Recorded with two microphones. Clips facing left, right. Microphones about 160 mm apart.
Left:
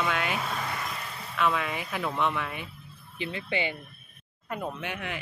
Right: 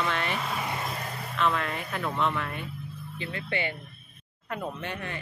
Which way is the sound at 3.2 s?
20° left (ahead or behind).